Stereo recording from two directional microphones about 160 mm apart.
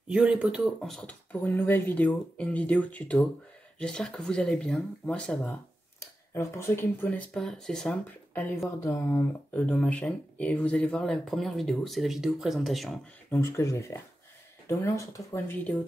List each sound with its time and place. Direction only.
0.1 s speech: 5° right (ahead or behind); by 7.2 s 15° left (ahead or behind)
7.3 s speech: 5° left (ahead or behind)
13.3 s speech: 15° left (ahead or behind)